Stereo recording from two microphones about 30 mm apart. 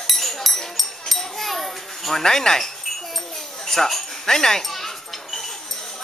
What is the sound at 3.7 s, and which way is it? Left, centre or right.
Speech, centre.